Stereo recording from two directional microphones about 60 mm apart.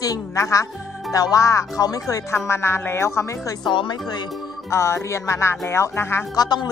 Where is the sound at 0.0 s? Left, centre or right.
Left.